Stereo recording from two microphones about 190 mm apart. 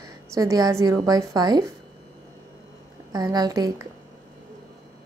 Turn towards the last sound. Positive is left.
turn(degrees=-20)  # may be behind; listen again after turning